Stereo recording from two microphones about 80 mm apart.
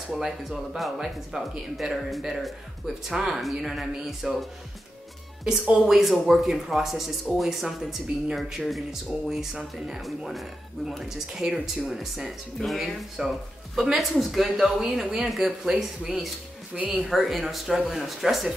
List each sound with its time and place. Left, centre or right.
0.2 s speech: centre
16.7 s speech: centre
17.1 s speech: centre